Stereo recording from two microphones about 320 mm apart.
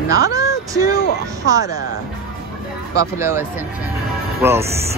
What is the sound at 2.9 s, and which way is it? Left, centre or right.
Speech, centre.